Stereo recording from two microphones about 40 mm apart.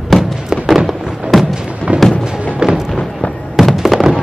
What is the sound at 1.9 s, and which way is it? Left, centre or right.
Music, right.